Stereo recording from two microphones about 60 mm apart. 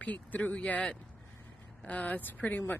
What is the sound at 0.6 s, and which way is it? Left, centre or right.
Speech, centre.